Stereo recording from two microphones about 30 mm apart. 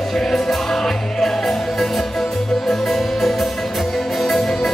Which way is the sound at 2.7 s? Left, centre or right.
Centre.